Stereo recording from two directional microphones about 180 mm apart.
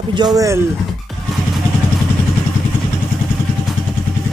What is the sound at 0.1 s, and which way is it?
Speech, 25° right (ahead or behind).